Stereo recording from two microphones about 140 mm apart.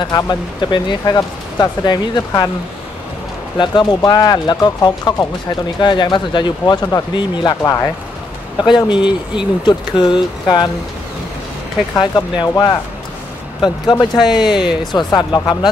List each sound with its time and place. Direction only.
0.0 s speech: 30° left (ahead or behind)
3.5 s speech: 35° left (ahead or behind)
8.5 s speech: 35° left (ahead or behind)
11.9 s speech: 25° left (ahead or behind)